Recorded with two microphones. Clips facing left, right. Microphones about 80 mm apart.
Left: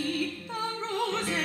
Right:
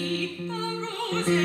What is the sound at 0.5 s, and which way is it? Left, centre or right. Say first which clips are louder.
Music: left 3 dB; centre.